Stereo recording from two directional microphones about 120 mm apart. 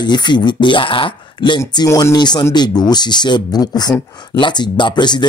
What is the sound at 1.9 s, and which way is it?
Speech, 25° left (ahead or behind).